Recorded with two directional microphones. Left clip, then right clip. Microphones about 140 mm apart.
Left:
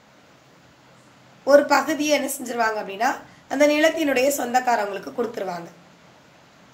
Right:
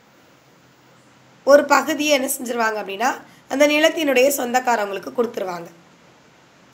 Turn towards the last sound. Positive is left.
turn(degrees=-30)  # may be behind; listen again after turning